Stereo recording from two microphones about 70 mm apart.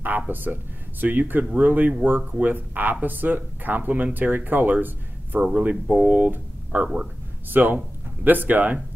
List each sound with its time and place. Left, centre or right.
0.3 s speech: right